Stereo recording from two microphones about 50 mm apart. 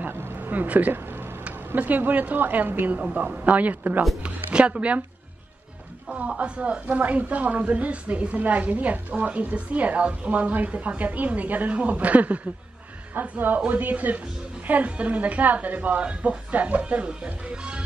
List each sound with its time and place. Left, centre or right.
0.0 s a sound: right
1.8 s a woman's voice: right
4.2 s speech: right
6.0 s speech: right
13.1 s a woman's voice: right